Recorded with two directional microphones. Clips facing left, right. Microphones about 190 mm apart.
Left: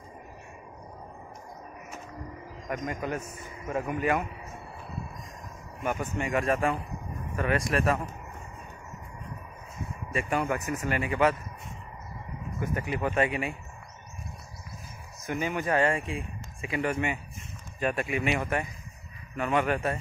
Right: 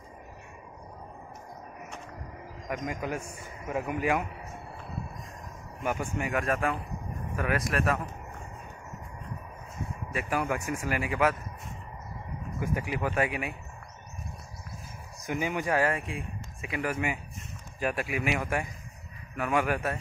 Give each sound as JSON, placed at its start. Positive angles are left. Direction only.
{"t": 2.7, "sound": "speech", "side_deg": -10}
{"t": 5.9, "sound": "speech", "side_deg": -5}
{"t": 10.1, "sound": "speech", "side_deg": -5}
{"t": 12.5, "sound": "speech", "side_deg": -10}
{"t": 15.2, "sound": "speech", "side_deg": -15}